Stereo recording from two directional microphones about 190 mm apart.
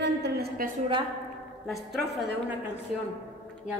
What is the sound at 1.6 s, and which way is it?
Speech, centre (ahead or behind).